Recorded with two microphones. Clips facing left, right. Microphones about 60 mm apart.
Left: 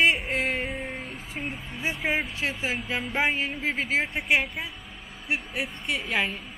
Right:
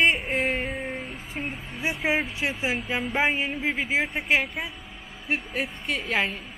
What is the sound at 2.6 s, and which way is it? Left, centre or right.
Speech, centre.